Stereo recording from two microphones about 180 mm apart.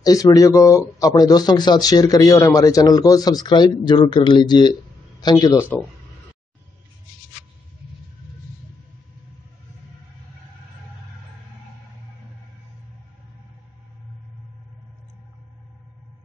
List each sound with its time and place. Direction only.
0.0 s speech: 20° left (ahead or behind)